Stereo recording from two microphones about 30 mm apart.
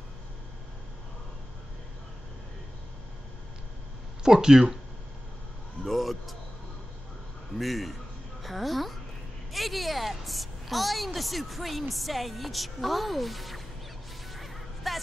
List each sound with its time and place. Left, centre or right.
4.2 s speech: centre
5.9 s a sound: centre
7.5 s a woman's voice: centre
14.3 s music: centre